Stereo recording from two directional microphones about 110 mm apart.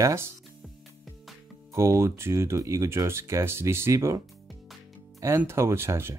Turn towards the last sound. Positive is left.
turn(degrees=-20)  # may be behind; listen again after turning